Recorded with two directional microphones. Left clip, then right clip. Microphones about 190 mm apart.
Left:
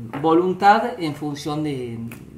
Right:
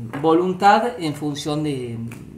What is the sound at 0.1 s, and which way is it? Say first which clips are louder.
Speech: even; 20° right (ahead or behind).